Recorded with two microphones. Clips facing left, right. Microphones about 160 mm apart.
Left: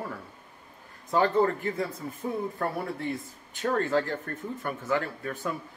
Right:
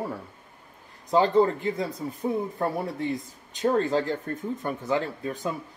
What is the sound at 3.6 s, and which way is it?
Speech, 20° right (ahead or behind).